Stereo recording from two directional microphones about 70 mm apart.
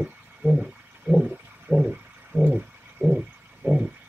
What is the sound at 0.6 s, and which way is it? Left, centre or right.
Stomach rumble, centre.